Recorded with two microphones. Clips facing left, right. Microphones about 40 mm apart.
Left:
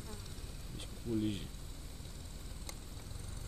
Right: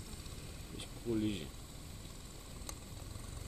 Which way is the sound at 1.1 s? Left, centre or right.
Centre.